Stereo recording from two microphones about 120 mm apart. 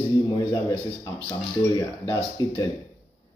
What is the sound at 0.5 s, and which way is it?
Speech, 30° left (ahead or behind).